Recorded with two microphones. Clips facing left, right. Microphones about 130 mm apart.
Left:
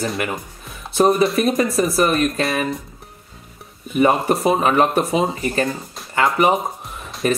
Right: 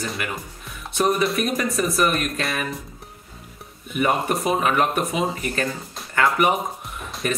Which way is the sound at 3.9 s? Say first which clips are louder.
Left 5 dB; 30° left (ahead or behind).